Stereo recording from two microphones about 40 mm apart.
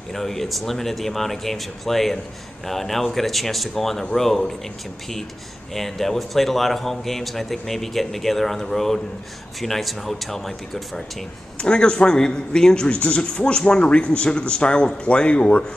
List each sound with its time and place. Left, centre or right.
0.1 s speech: centre
5.8 s speech: centre
11.5 s a man's voice: left